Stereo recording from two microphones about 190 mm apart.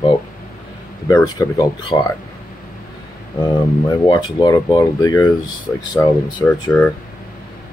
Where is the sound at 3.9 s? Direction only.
25° left (ahead or behind).